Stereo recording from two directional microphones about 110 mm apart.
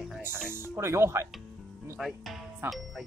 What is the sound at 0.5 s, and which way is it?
Speech, 25° right (ahead or behind).